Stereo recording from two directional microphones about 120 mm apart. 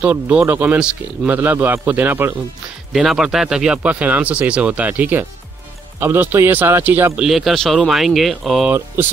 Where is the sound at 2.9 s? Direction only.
Centre (ahead or behind).